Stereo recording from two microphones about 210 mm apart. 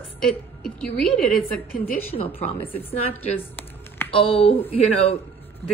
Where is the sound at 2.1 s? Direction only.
30° left (ahead or behind).